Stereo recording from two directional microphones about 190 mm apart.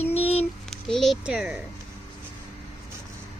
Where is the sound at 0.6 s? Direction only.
Centre (ahead or behind).